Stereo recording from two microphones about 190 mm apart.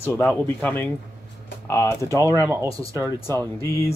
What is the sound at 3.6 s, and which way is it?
Speech, 15° left (ahead or behind).